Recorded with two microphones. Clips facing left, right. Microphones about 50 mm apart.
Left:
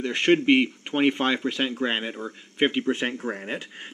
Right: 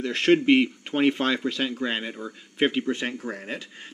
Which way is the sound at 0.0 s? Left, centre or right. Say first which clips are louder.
Even; centre.